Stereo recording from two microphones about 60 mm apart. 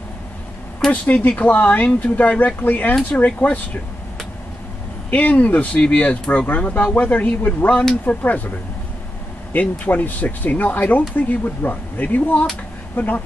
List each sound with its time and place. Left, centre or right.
1.0 s speech: left
5.1 s speech: left